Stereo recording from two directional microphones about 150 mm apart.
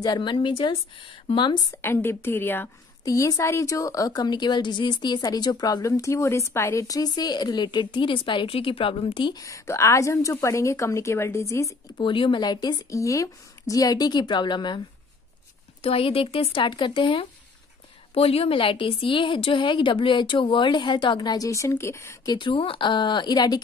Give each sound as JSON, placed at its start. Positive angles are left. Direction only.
{"t": 0.0, "sound": "a woman's voice", "side_deg": 30}
{"t": 1.8, "sound": "a woman's voice", "side_deg": 15}
{"t": 12.0, "sound": "a woman's voice", "side_deg": 35}
{"t": 15.8, "sound": "a woman's voice", "side_deg": 40}